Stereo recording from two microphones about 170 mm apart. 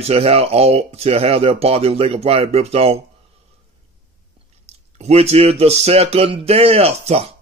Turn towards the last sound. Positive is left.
turn(degrees=-35)  # may be behind; listen again after turning